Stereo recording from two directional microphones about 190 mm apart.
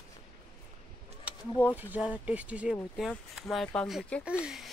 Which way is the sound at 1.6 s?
10° right (ahead or behind).